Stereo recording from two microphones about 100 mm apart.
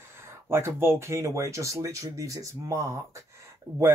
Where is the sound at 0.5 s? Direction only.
25° right (ahead or behind).